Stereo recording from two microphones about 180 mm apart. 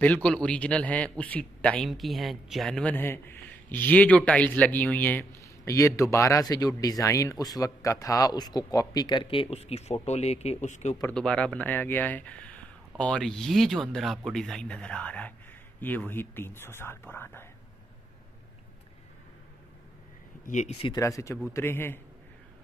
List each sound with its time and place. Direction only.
0.0 s a man's voice: 5° left (ahead or behind); by 11.0 s 40° left (ahead or behind)
11.0 s a man's voice: 5° left (ahead or behind)
20.4 s speech: 40° left (ahead or behind)
20.8 s a man's voice: 20° left (ahead or behind)